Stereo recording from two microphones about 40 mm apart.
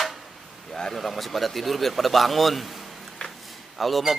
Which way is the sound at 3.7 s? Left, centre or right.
Centre.